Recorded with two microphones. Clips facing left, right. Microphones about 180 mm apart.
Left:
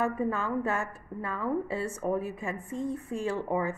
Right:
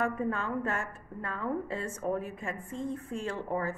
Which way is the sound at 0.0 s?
5° left (ahead or behind).